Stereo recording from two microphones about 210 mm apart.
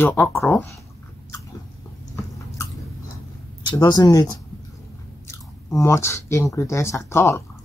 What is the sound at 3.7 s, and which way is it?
Speech, 20° left (ahead or behind).